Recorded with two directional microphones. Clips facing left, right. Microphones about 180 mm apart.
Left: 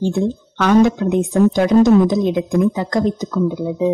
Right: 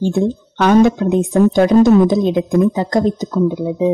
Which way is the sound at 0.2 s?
40° right (ahead or behind).